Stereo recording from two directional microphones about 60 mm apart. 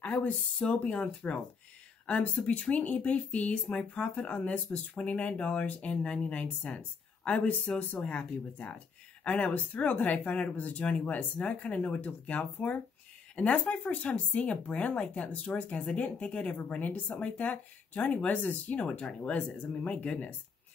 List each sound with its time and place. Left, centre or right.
0.0 s speech: left